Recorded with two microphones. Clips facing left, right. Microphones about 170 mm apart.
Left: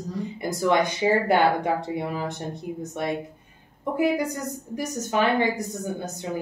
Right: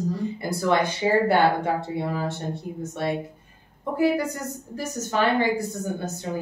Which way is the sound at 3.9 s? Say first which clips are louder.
Right 1 dB; 15° left (ahead or behind).